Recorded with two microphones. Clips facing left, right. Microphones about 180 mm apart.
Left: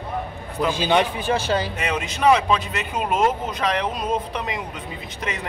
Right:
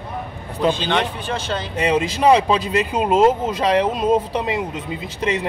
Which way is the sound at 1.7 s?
30° right (ahead or behind).